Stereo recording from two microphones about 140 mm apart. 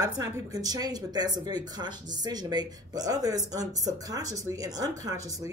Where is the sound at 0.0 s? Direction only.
25° right (ahead or behind).